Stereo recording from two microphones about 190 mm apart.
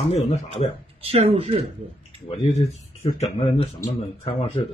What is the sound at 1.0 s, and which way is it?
Speech, 30° right (ahead or behind).